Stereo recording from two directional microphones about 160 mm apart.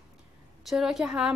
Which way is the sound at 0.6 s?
5° right (ahead or behind).